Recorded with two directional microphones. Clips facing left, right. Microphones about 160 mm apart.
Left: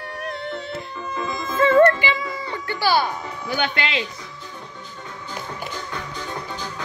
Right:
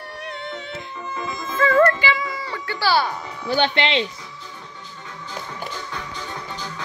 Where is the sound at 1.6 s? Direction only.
30° left (ahead or behind).